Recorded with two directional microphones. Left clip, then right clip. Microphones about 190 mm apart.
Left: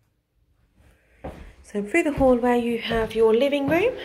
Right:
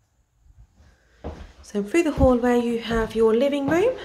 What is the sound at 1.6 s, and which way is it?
Speech, 15° right (ahead or behind).